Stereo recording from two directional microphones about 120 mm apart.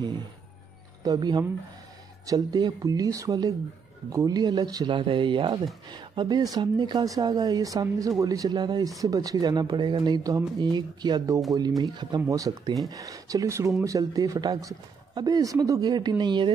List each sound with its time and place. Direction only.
1.0 s speech: 35° right (ahead or behind)